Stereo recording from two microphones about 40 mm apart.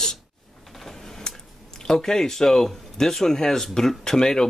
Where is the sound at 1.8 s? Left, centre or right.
Centre.